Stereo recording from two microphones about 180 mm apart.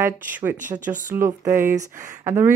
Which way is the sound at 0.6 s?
45° right (ahead or behind).